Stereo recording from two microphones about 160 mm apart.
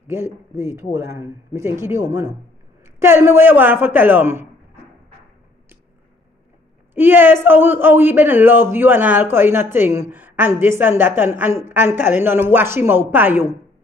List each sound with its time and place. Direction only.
0.0 s a man's voice: 15° right (ahead or behind)
6.9 s a man's voice: 15° right (ahead or behind)